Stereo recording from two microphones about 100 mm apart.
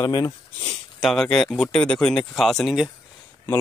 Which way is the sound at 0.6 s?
5° left (ahead or behind).